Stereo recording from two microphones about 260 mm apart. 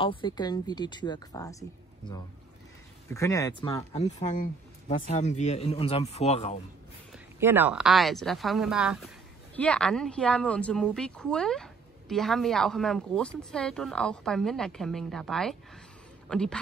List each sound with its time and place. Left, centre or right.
0.0 s a woman's voice: centre
3.9 s speech: left
7.3 s a woman's voice: centre